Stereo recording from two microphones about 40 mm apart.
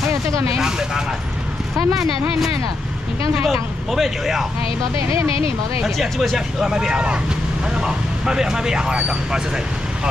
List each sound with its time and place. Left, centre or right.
0.6 s speech: centre
5.9 s speech: centre
6.3 s speech: centre